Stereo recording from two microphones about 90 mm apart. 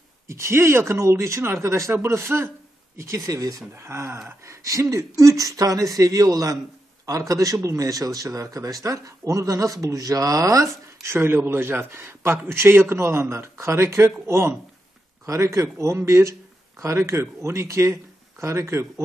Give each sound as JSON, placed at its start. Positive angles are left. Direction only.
{"t": 0.3, "sound": "a man's voice", "side_deg": -30}